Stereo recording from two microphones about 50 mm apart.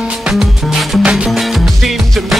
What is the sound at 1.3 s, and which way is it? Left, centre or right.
Music, centre.